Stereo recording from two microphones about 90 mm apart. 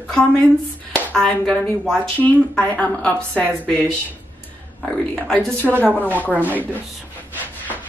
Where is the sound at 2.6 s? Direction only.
15° left (ahead or behind).